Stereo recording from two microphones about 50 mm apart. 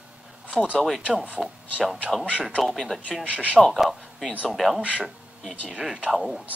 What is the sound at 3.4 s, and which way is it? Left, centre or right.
Speech, centre.